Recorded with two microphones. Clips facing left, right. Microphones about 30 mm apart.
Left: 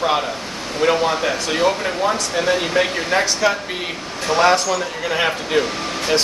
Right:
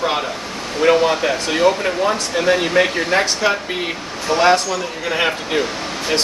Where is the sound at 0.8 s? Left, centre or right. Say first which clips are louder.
Right 3 dB; centre.